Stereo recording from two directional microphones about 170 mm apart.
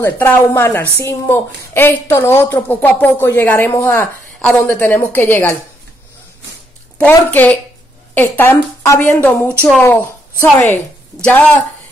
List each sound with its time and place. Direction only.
0.0 s a woman's voice: 15° left (ahead or behind)
7.0 s a woman's voice: 10° left (ahead or behind)
11.2 s a woman's voice: 10° left (ahead or behind)